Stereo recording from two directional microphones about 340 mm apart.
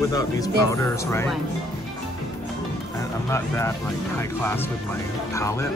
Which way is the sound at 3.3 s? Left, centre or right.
Centre.